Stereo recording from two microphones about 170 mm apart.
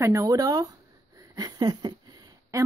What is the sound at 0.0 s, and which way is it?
Speech, 20° right (ahead or behind).